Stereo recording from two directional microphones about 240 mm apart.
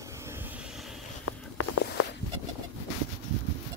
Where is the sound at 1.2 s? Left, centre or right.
Left.